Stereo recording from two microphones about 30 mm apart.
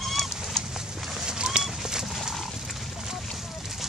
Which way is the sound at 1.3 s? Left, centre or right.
Right.